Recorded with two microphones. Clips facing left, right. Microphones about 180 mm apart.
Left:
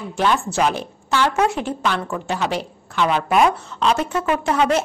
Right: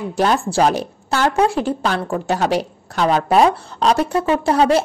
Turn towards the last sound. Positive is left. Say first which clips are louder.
# right 3 dB
turn(degrees=-35)  # may be behind; listen again after turning